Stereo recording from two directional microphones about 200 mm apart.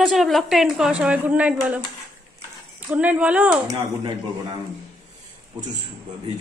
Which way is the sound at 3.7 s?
20° right (ahead or behind).